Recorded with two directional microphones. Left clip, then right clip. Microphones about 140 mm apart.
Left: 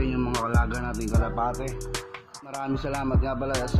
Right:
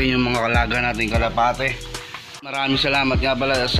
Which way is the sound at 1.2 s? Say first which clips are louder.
Right 8 dB; 25° right (ahead or behind).